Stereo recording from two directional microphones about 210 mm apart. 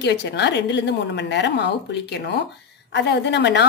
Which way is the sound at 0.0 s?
55° left (ahead or behind).